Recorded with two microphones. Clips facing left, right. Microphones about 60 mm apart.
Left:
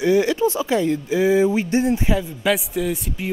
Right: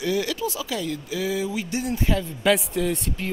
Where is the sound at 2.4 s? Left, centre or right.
Centre.